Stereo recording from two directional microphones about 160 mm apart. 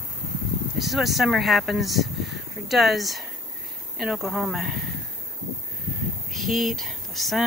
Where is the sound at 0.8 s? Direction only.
Centre (ahead or behind).